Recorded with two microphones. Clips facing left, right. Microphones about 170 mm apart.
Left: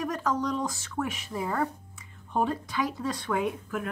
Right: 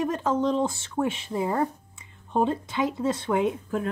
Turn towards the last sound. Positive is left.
turn(degrees=-25)  # may be behind; listen again after turning